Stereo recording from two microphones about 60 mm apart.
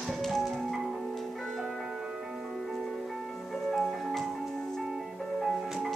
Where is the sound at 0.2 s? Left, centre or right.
Centre.